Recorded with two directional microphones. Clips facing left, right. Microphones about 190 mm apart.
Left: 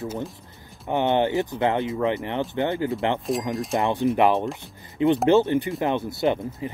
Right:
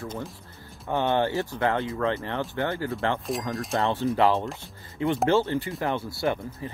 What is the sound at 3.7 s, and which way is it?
Speech, 15° left (ahead or behind).